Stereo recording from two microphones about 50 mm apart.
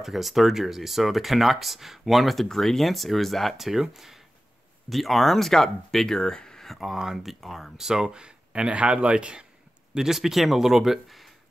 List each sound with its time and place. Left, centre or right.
0.0 s speech: centre
6.7 s speech: centre; by 9.5 s right
9.9 s speech: centre